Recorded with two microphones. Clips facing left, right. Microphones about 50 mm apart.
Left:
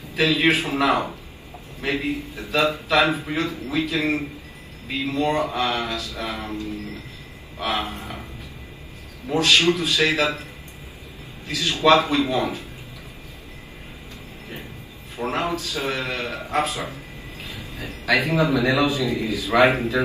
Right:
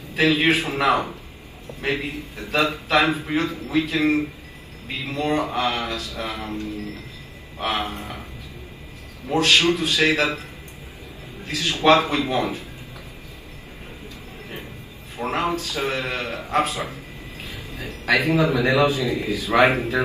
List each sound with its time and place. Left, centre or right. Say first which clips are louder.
0.1 s a man's voice: right 1 dB; right
5.0 s a man's voice: left 1 dB; right
9.3 s a man's voice: even; right
11.4 s a man's voice: even; right
15.1 s a man's voice: right 1 dB; right
16.4 s a sound: right 2 dB; right
18.0 s a man's voice: right 1 dB; right